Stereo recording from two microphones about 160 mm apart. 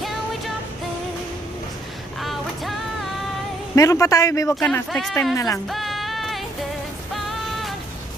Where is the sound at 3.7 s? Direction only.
20° left (ahead or behind).